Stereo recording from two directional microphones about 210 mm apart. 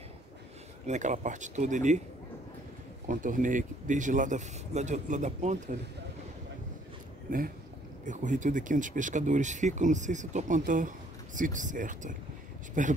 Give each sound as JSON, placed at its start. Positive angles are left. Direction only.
{"t": 0.8, "sound": "speech", "side_deg": -35}
{"t": 3.1, "sound": "speech", "side_deg": -40}
{"t": 7.2, "sound": "speech", "side_deg": -40}